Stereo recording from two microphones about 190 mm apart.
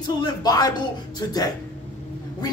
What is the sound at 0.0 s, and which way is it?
A man's voice, 20° left (ahead or behind).